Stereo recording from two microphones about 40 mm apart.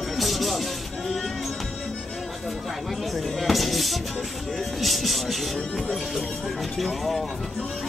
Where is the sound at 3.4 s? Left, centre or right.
Centre.